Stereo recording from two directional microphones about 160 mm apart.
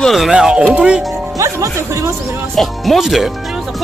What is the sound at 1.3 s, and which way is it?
Speech, 20° right (ahead or behind).